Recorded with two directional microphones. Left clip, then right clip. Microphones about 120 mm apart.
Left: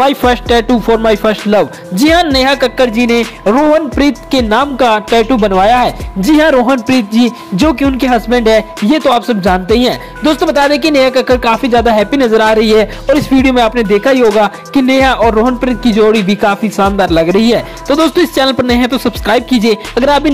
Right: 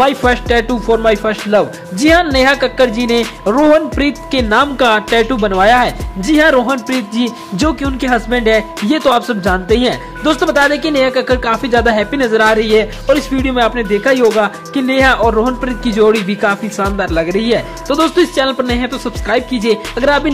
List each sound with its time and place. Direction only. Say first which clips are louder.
0.0 s speech: left 2 dB; 35° left (ahead or behind)
2.3 s music: left 1 dB; 30° left (ahead or behind)
3.4 s music: left 1 dB; centre (ahead or behind)
4.0 s speech: left 4 dB; 15° left (ahead or behind)
5.6 s music: right 1 dB; 25° left (ahead or behind)
12.5 s speech: left 3 dB; 45° left (ahead or behind); by 14.3 s 30° left (ahead or behind)
14.4 s music: left 4 dB; 35° left (ahead or behind)
16.9 s speech: left 5 dB; 35° left (ahead or behind)